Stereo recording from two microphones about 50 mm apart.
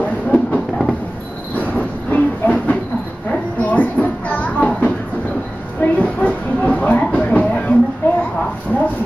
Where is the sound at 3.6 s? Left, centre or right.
Left.